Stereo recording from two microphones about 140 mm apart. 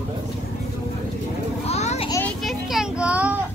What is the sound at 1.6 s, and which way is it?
Children playing, 50° left (ahead or behind).